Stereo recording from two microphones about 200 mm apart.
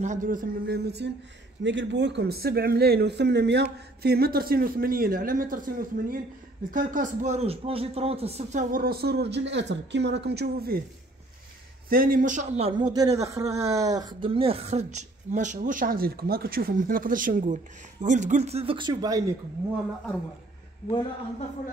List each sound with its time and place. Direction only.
0.0 s a man's voice: 40° right (ahead or behind)
11.9 s a man's voice: 45° right (ahead or behind); by 19.2 s 20° right (ahead or behind)